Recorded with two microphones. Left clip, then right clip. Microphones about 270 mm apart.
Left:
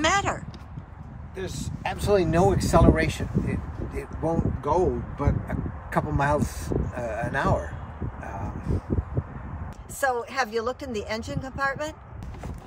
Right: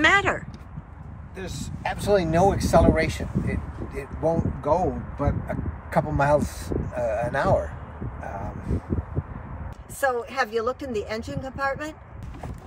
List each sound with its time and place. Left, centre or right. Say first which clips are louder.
0.0 s a sound: right 4 dB; centre
1.3 s speech: left 2 dB; centre
10.1 s speech: right 1 dB; centre